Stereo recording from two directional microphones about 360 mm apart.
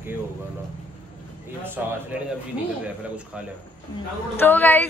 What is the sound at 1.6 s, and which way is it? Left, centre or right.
Speech, centre.